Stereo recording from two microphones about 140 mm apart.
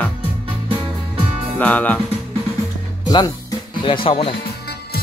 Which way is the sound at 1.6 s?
10° left (ahead or behind).